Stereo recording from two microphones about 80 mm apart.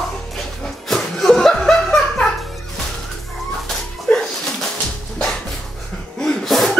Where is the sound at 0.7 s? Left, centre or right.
Centre.